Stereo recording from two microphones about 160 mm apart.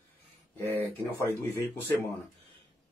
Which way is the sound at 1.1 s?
15° left (ahead or behind).